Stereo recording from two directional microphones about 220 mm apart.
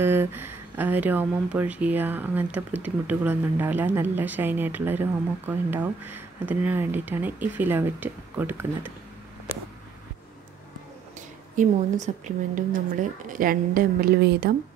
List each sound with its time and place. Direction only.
0.0 s speech: 10° right (ahead or behind)
11.1 s a woman's voice: 35° right (ahead or behind)